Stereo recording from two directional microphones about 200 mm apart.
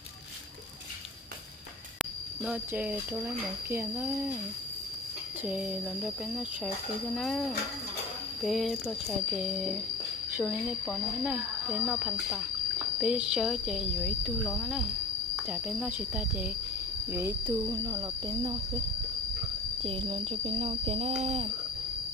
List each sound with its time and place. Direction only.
2.0 s speech: 5° right (ahead or behind)
5.4 s speech: 5° right (ahead or behind); by 18.6 s 20° right (ahead or behind)
19.8 s a sound: 30° right (ahead or behind)